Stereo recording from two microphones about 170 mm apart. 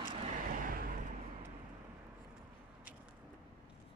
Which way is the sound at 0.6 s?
60° right (ahead or behind).